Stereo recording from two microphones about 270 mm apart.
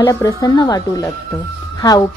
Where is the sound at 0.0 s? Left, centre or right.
Centre.